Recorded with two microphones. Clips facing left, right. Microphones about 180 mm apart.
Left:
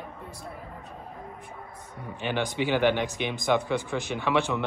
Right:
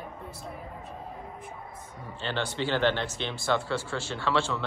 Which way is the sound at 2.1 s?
15° left (ahead or behind).